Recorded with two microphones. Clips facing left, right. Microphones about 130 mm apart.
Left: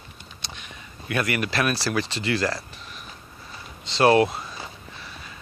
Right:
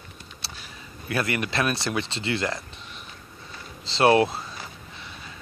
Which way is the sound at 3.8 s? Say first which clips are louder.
Left 1 dB; 25° right (ahead or behind).